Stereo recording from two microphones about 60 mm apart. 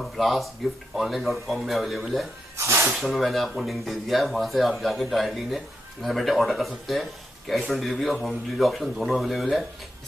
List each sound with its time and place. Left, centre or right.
0.0 s speech: centre
2.5 s snake: right
3.0 s speech: centre